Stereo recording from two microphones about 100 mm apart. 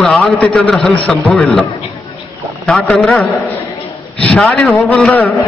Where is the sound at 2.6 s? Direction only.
5° left (ahead or behind).